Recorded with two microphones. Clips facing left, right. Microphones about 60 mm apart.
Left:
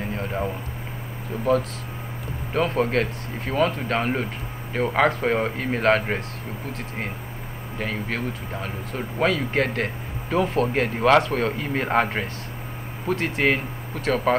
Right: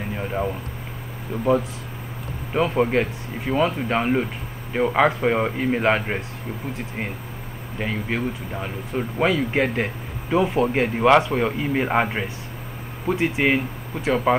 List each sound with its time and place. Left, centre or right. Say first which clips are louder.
0.1 s a sound: right 3 dB; centre
1.4 s speech: right 1 dB; centre
7.8 s speech: right 2 dB; centre